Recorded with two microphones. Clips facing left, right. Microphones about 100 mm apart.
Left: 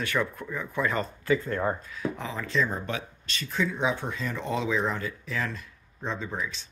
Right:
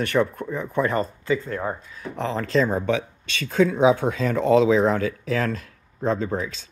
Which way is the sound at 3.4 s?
90° right.